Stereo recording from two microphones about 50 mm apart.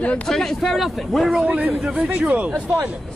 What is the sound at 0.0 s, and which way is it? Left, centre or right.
Speech, left.